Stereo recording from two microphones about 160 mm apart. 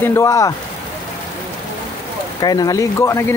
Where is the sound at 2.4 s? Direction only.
25° left (ahead or behind).